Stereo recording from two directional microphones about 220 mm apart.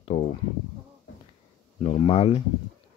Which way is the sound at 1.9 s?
25° left (ahead or behind).